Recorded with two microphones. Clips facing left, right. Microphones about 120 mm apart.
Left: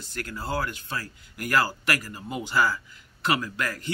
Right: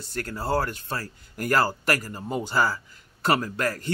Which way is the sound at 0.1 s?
40° right (ahead or behind).